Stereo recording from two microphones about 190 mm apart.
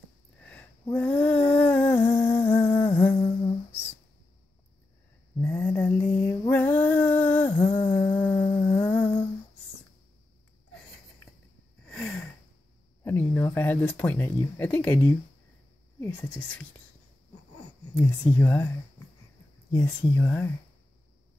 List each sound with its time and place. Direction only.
0.4 s a sound: 5° left (ahead or behind)
0.8 s speech: 5° left (ahead or behind)
1.5 s humming: 10° left (ahead or behind)
3.2 s humming: 25° left (ahead or behind)
5.4 s mantra: 10° left (ahead or behind)
8.0 s a sound: 10° left (ahead or behind)
8.6 s humming: 10° left (ahead or behind)
11.9 s a sound: 5° left (ahead or behind)
13.0 s speech: 10° left (ahead or behind)
17.9 s speech: 10° left (ahead or behind)
19.7 s speech: 15° left (ahead or behind)